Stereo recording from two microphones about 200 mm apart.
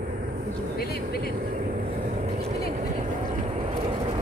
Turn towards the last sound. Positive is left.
turn(degrees=-25)  # may be behind; listen again after turning